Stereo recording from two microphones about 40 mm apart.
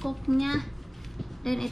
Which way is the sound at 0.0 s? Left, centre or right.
Centre.